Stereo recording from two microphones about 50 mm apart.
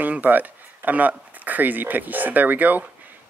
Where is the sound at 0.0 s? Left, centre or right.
Right.